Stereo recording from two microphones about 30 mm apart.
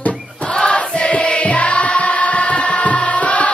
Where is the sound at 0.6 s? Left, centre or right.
Left.